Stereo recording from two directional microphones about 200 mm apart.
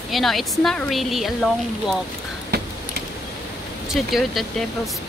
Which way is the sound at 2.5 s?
55° right (ahead or behind).